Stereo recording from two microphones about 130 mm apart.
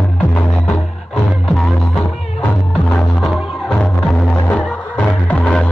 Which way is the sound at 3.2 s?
5° left (ahead or behind).